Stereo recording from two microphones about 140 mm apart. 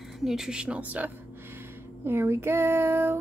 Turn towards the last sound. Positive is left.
turn(degrees=-15)  # may be behind; listen again after turning